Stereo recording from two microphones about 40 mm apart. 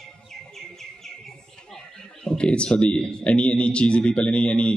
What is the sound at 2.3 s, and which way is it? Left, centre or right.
A man's voice, left.